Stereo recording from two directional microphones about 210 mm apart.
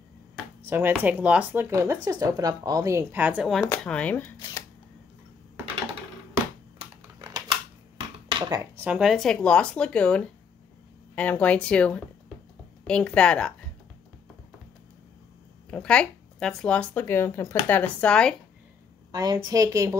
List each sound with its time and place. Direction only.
0.7 s speech: 10° right (ahead or behind)
3.6 s speech: 10° left (ahead or behind)
6.8 s typing: 20° right (ahead or behind)
8.3 s a sound: 20° right (ahead or behind)
8.7 s speech: 5° right (ahead or behind)
15.7 s speech: 5° left (ahead or behind)
19.1 s speech: 20° right (ahead or behind)